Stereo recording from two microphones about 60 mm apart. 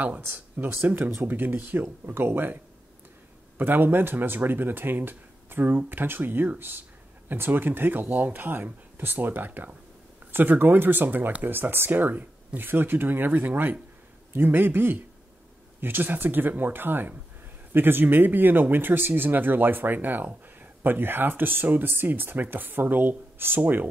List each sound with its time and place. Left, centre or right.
0.0 s speech: right